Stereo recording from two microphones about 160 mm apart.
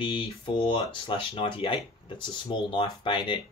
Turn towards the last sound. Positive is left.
turn(degrees=30)  # may be behind; listen again after turning